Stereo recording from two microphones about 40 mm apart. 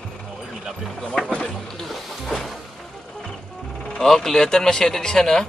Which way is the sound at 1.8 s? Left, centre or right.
Centre.